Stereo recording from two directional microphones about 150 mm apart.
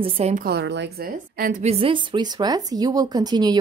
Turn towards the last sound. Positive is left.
turn(degrees=-25)  # may be behind; listen again after turning